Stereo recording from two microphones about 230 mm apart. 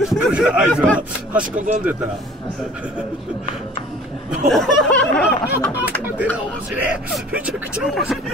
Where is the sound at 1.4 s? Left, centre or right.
Right.